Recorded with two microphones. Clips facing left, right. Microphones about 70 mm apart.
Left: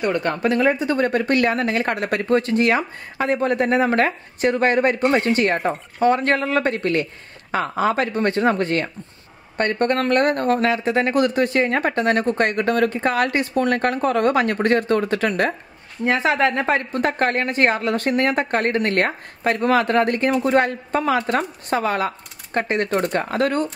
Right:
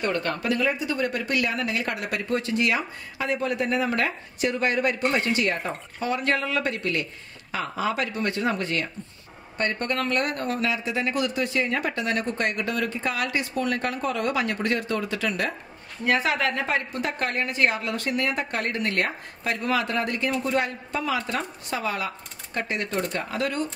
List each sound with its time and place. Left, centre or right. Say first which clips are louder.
0.0 s speech: left 5 dB; centre
0.3 s speech: left 6 dB; left
16.0 s speech: left 5 dB; left